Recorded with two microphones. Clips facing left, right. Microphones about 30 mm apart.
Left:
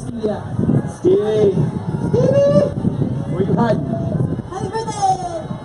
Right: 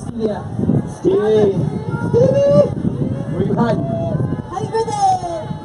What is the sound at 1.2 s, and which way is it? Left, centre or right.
Speech, centre.